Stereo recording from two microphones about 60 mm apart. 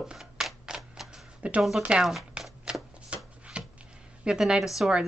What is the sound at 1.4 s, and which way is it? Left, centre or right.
Speech, right.